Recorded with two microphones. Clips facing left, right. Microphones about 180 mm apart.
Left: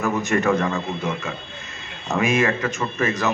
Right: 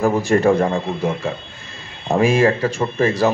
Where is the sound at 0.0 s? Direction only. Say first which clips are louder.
Right 6 dB; 30° right (ahead or behind).